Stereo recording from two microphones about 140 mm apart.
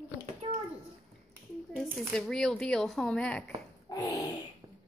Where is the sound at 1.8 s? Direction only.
Centre (ahead or behind).